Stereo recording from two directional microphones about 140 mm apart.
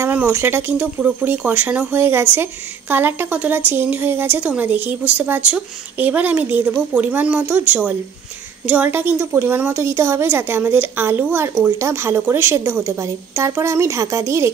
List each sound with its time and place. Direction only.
0.0 s speech: 10° right (ahead or behind)